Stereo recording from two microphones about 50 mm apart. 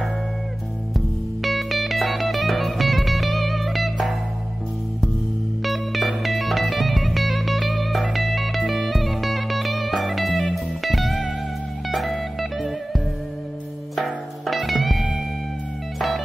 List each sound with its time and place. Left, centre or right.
0.9 s music: centre
5.6 s music: centre